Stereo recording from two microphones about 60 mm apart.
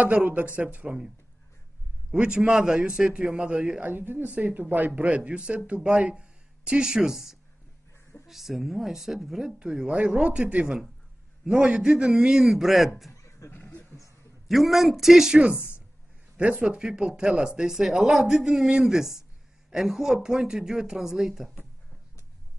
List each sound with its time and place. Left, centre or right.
0.0 s speech: right
2.1 s speech: centre
3.8 s speech: right; by 9.6 s centre
9.6 s speech: centre
13.1 s a sound: left
13.5 s a sound: left
14.5 s speech: centre
16.3 s speech: centre